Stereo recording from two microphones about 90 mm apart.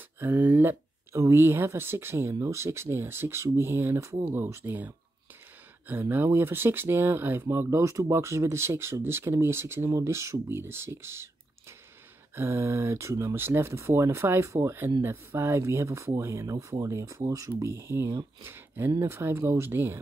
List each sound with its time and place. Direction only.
0.2 s speech: 20° right (ahead or behind)
12.4 s speech: 25° right (ahead or behind)